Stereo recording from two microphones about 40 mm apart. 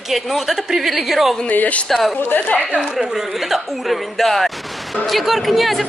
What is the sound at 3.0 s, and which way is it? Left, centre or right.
A woman's voice, centre.